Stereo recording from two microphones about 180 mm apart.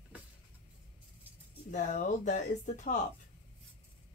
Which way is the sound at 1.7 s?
40° left (ahead or behind).